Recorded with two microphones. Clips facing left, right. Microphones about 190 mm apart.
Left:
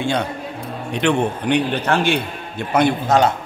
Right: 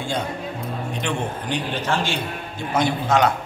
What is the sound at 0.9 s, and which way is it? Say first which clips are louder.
A man's voice: left 10 dB; 65° left (ahead or behind).